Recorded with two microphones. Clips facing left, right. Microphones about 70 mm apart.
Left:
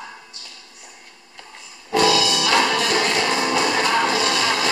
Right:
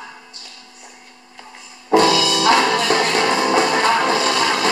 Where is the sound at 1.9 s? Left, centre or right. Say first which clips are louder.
Right 4 dB; right.